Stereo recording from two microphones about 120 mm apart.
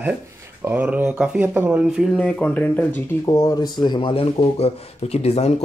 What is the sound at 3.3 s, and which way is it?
Speech, 25° left (ahead or behind).